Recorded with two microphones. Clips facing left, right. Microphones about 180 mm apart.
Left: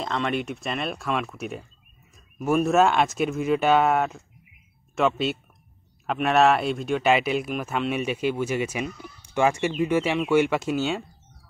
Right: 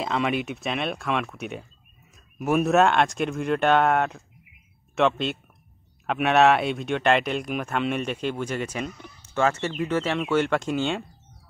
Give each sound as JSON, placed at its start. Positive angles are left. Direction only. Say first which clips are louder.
{"t": 0.0, "sound": "speech", "louder": "right 1 dB", "side_deg": -5}